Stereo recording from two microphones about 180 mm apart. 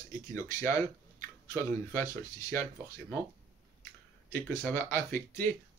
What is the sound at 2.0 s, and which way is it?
Speech, 20° left (ahead or behind).